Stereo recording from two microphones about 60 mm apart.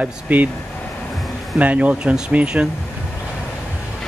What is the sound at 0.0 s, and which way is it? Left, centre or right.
Speech, right.